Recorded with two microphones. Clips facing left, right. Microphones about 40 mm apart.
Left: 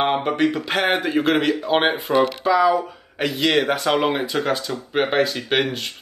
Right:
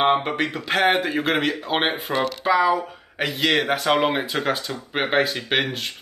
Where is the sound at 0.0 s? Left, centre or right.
Centre.